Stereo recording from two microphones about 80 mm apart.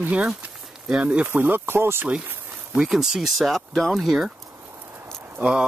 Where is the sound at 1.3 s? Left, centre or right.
Right.